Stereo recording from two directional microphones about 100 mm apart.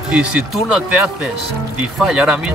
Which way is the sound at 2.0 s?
10° right (ahead or behind).